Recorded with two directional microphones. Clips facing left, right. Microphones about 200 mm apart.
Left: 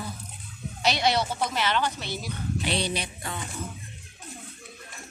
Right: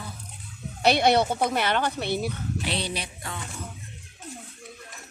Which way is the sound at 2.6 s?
Centre (ahead or behind).